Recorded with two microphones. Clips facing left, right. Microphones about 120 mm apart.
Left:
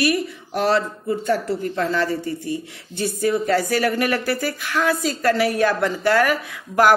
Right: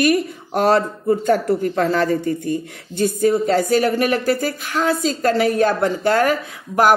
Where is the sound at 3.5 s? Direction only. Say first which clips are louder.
Right 3 dB; 20° right (ahead or behind).